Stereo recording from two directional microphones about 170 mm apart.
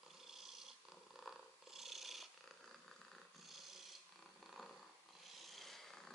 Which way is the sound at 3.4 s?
Centre (ahead or behind).